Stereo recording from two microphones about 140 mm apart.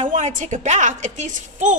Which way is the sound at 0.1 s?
60° right (ahead or behind).